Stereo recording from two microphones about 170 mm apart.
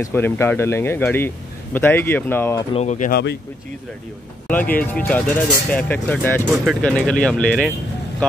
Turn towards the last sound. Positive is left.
turn(degrees=5)  # may be behind; listen again after turning